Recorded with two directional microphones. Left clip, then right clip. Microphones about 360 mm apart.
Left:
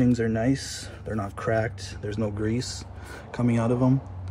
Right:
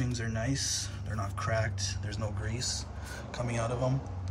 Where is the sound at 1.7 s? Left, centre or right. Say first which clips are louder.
Left 6 dB; left.